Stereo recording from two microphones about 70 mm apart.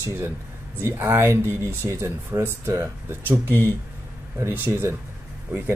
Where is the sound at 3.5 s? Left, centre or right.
Left.